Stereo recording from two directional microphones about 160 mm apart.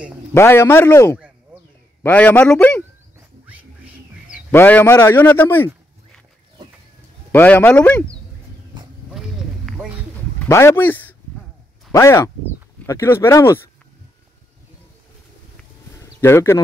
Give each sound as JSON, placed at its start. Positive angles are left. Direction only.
{"t": 0.3, "sound": "a man's voice", "side_deg": 15}
{"t": 3.2, "sound": "wild animals", "side_deg": -10}
{"t": 4.5, "sound": "a man's voice", "side_deg": 10}
{"t": 7.3, "sound": "a man's voice", "side_deg": 15}
{"t": 9.1, "sound": "a sound", "side_deg": -5}
{"t": 10.4, "sound": "a man's voice", "side_deg": 15}
{"t": 16.0, "sound": "speech", "side_deg": 15}